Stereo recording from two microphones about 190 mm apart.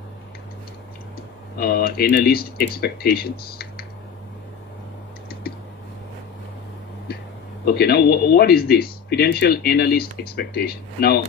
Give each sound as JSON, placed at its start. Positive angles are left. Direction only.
{"t": 1.6, "sound": "speech", "side_deg": 50}
{"t": 7.6, "sound": "speech", "side_deg": 55}